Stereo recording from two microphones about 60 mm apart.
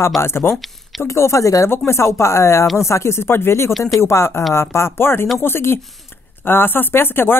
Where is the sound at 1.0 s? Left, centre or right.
Left.